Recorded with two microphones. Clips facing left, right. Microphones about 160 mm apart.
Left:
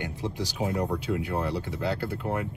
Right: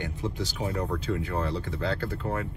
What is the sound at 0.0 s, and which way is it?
Speech, 10° left (ahead or behind).